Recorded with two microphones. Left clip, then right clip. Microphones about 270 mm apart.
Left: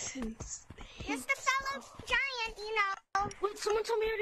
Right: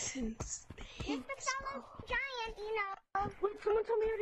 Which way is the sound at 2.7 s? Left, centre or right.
Left.